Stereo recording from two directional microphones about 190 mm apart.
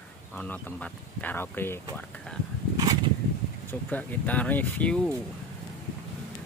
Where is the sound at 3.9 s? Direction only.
10° left (ahead or behind).